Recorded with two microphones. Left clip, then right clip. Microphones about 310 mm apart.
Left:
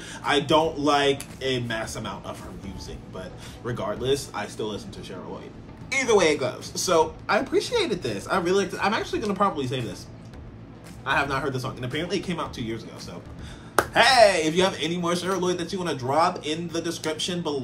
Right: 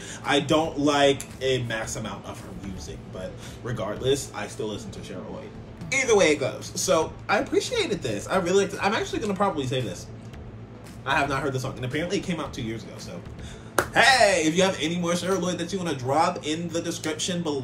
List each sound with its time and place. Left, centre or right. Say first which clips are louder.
0.1 s speech: left 2 dB; centre
3.6 s speech: even; centre
5.9 s speech: even; centre
11.1 s speech: even; centre